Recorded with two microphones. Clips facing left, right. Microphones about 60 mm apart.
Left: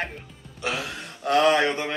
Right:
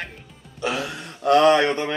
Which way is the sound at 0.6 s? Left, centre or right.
Right.